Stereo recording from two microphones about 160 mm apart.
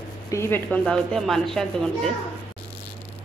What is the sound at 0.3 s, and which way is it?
Speech, 15° left (ahead or behind).